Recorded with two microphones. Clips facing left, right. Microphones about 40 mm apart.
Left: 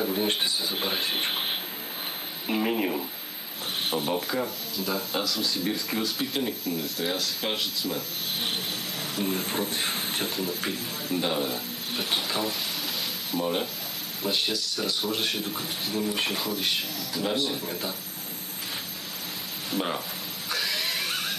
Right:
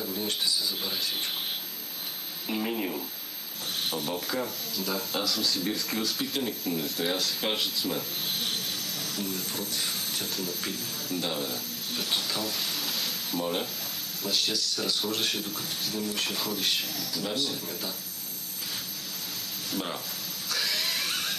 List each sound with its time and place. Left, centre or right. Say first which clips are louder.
0.0 s a sound: left 5 dB; left
2.4 s a sound: left 4 dB; left
3.9 s rub: left 6 dB; centre
4.3 s speech: left 2 dB; centre
9.2 s speech: left 9 dB; left
10.3 s speech: left 4 dB; centre
12.8 s a sound: left 1 dB; centre
14.2 s speech: left 2 dB; centre
14.5 s speech: left 1 dB; centre
17.2 s speech: left 5 dB; centre
19.7 s speech: left 5 dB; left
20.5 s music: left 1 dB; centre